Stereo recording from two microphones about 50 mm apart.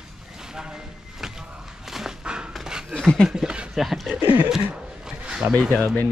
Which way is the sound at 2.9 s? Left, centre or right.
Centre.